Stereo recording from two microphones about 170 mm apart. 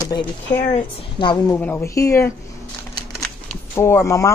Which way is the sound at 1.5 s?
10° left (ahead or behind).